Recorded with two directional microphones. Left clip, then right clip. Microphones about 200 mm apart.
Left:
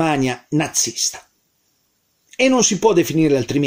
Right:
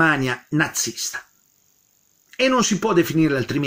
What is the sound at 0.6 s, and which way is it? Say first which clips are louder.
Speech: left 2 dB; 30° right (ahead or behind).